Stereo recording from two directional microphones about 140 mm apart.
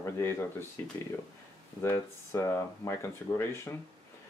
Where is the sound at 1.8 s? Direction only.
20° left (ahead or behind).